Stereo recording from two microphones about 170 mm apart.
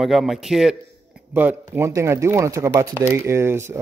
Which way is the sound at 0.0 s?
Centre (ahead or behind).